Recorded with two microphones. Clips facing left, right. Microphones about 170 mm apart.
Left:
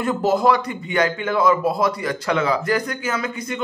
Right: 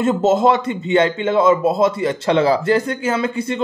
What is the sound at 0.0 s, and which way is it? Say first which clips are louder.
Speech: right 4 dB; 25° right (ahead or behind).